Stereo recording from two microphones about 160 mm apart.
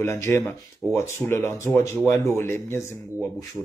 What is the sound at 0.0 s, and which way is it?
Speech, 15° left (ahead or behind).